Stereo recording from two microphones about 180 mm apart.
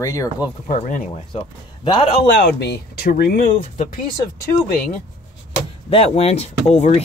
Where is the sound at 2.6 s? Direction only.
60° left (ahead or behind).